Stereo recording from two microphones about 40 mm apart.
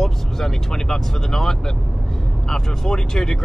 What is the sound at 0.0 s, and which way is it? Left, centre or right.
Speech, centre.